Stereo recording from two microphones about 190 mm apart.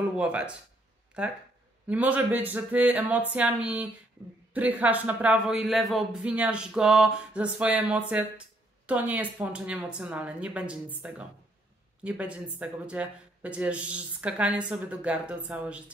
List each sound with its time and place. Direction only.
0.1 s speech: 5° right (ahead or behind)